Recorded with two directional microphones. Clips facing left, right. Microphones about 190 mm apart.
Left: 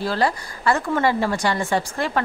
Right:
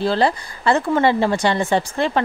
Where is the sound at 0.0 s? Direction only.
25° right (ahead or behind).